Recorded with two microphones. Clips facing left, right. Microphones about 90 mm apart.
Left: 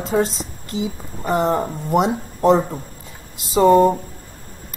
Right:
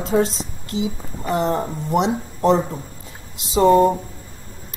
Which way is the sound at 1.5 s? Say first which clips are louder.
Left 2 dB; 5° left (ahead or behind).